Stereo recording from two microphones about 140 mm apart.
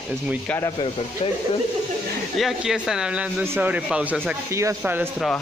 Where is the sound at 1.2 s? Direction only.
40° left (ahead or behind).